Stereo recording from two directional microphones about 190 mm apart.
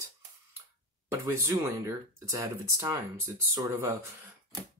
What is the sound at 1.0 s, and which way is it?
Speech, 15° right (ahead or behind).